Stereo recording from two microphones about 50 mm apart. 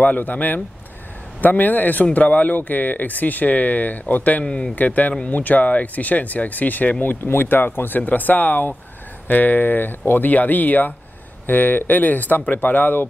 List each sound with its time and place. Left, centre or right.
0.0 s speech: left
4.5 s speech: centre
4.7 s speech: left